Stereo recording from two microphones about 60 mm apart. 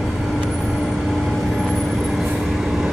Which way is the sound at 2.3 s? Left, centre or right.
Centre.